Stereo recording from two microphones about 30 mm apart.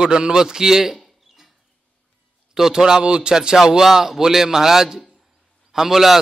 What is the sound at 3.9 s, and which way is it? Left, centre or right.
A man's voice, centre.